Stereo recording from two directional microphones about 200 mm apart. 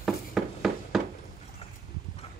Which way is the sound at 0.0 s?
Centre (ahead or behind).